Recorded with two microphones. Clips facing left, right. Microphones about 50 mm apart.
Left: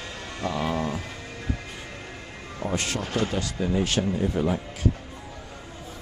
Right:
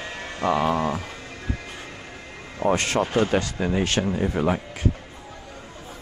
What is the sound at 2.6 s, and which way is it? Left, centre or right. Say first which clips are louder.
Speech: right 7 dB; right.